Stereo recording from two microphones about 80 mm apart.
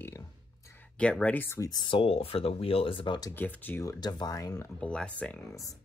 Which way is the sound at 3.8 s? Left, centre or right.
Left.